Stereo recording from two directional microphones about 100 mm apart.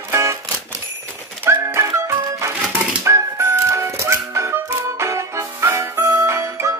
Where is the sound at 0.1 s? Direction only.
25° right (ahead or behind).